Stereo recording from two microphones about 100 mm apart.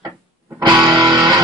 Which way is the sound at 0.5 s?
45° right (ahead or behind).